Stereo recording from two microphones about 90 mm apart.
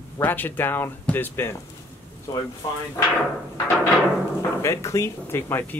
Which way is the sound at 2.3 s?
40° left (ahead or behind).